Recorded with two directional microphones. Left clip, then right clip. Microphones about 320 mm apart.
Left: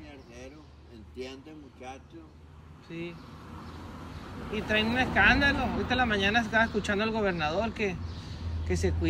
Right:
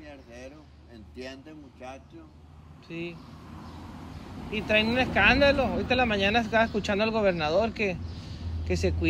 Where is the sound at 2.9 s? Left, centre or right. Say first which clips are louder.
Right 3 dB; right.